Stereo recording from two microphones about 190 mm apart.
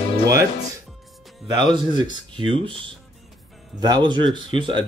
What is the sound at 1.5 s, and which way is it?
Speech, 25° right (ahead or behind).